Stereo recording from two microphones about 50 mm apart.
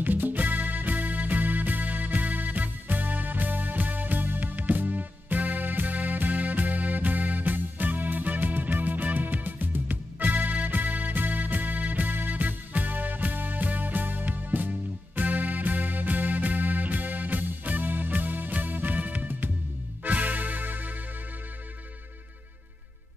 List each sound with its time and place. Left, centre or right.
0.0 s music: right